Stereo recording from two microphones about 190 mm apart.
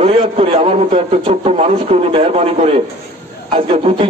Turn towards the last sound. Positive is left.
turn(degrees=-30)  # may be behind; listen again after turning